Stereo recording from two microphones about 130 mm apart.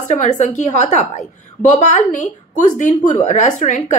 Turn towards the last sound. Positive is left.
turn(degrees=65)  # may be behind; listen again after turning